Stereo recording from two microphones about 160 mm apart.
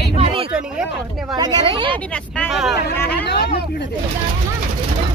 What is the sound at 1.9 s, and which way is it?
Speech, 10° left (ahead or behind).